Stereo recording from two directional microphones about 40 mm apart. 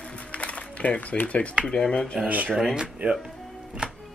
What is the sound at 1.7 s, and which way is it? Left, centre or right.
Speech, centre.